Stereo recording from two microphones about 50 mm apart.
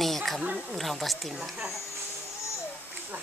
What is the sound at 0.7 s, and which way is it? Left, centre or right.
Speech, centre.